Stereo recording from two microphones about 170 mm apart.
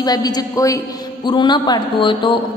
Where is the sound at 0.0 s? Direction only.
20° left (ahead or behind).